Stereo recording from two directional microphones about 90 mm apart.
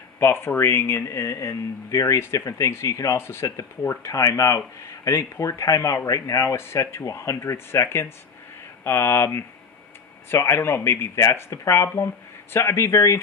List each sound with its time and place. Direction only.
0.2 s speech: 25° left (ahead or behind)